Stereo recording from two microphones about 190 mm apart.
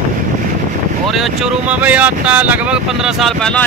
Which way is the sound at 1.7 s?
10° right (ahead or behind).